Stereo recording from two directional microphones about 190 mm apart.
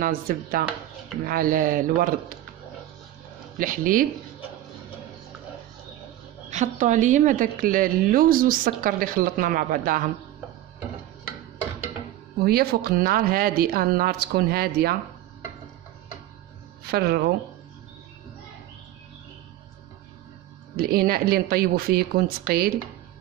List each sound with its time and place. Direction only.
0.0 s a woman's voice: 50° right (ahead or behind)
3.5 s a woman's voice: 45° right (ahead or behind)
6.5 s a woman's voice: 40° right (ahead or behind)
12.4 s a woman's voice: 55° right (ahead or behind)
16.8 s speech: 55° right (ahead or behind)
20.7 s a woman's voice: 55° right (ahead or behind)